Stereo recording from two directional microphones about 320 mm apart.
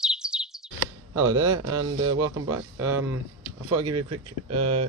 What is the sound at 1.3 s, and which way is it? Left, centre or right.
Speech, right.